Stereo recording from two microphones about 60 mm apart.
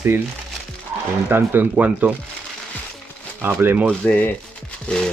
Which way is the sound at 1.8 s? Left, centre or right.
Right.